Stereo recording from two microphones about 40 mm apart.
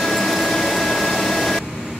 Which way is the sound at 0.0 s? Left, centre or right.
Centre.